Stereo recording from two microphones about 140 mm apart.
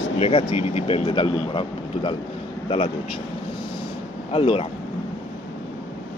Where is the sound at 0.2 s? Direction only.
45° left (ahead or behind).